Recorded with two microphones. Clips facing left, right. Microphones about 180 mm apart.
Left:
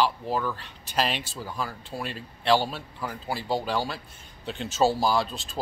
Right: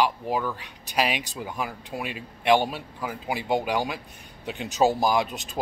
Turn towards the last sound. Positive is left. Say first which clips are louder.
# right 2 dB
turn(degrees=-20)  # may be behind; listen again after turning